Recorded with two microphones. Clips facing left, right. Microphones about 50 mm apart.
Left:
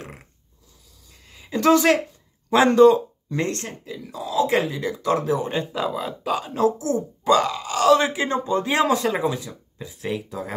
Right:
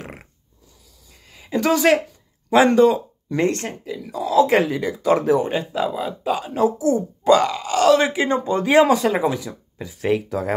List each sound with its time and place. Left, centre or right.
0.0 s a sound: right
1.3 s a sound: centre
2.5 s speech: centre
3.3 s speech: right
4.2 s speech: right
4.7 s speech: right
5.5 s speech: centre
7.2 s speech: right